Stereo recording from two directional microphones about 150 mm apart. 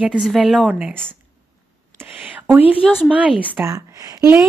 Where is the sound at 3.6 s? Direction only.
20° right (ahead or behind).